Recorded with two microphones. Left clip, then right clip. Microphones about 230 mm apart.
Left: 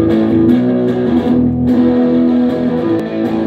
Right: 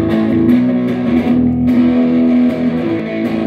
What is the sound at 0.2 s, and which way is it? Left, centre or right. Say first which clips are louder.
Music: left 2 dB; centre.